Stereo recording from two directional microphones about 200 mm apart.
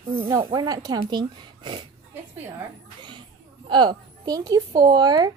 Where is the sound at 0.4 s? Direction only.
20° right (ahead or behind).